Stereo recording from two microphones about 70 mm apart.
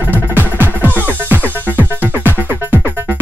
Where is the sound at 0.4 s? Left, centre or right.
Right.